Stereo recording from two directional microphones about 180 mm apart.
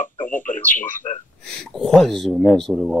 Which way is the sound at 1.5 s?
5° left (ahead or behind).